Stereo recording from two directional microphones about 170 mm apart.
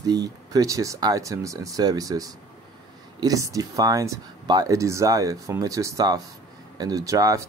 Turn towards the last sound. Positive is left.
turn(degrees=-20)  # may be behind; listen again after turning